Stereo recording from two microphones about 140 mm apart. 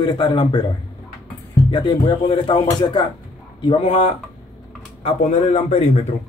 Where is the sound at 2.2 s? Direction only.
40° left (ahead or behind).